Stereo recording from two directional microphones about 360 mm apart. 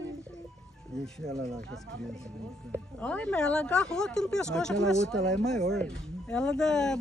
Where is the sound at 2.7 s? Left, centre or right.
Centre.